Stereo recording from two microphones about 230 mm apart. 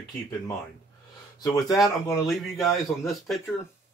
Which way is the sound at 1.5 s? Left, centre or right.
Centre.